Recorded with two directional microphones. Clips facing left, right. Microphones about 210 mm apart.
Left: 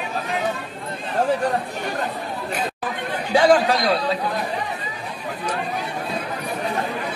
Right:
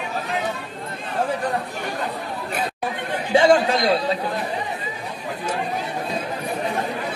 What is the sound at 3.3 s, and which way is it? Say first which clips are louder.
Chatter: even; 25° right (ahead or behind).